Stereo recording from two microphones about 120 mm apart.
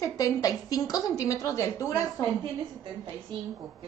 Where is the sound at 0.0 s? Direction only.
30° left (ahead or behind).